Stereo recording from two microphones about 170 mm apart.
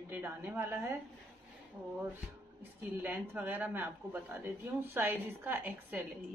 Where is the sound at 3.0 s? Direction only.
10° right (ahead or behind).